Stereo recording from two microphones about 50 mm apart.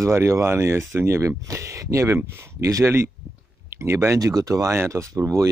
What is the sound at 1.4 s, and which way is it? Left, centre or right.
Speech, right.